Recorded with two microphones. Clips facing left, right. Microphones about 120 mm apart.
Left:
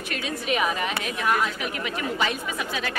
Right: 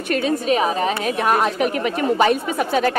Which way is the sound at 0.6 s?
35° right (ahead or behind).